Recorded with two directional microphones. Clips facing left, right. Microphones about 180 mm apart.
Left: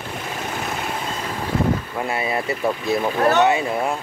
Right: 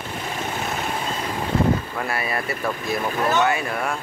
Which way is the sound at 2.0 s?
20° left (ahead or behind).